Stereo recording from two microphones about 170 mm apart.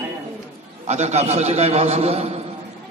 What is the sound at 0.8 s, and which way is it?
A man's voice, 40° right (ahead or behind).